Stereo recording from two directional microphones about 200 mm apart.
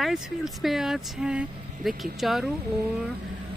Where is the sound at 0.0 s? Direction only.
Centre (ahead or behind).